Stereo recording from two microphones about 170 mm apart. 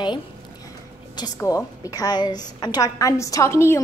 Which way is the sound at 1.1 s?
20° left (ahead or behind).